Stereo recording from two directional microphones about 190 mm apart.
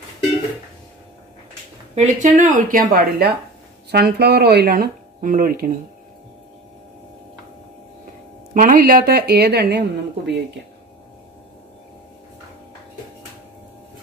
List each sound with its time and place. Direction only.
2.0 s speech: 40° right (ahead or behind)
8.5 s speech: 45° right (ahead or behind)